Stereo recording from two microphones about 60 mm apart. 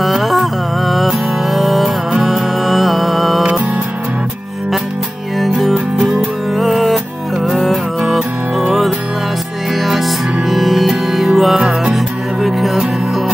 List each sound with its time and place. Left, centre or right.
0.0 s music: centre
3.4 s music: centre
5.6 s music: centre